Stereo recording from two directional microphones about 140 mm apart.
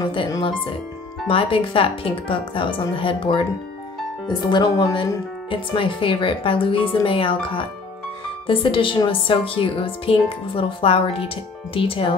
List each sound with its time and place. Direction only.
0.0 s a woman's voice: 40° left (ahead or behind)